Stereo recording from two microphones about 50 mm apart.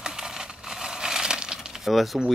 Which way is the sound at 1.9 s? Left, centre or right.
Centre.